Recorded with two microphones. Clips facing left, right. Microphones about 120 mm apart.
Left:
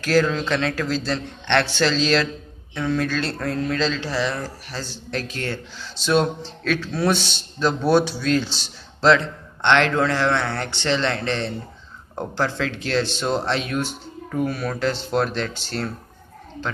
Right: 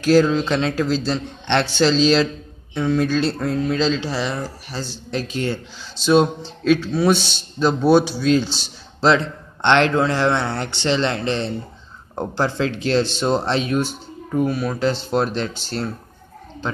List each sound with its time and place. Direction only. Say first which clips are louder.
0.0 s a man's voice: right 4 dB; 20° right (ahead or behind)
6.9 s a man's voice: right 4 dB; 10° right (ahead or behind)
14.3 s speech: right 4 dB; 10° right (ahead or behind)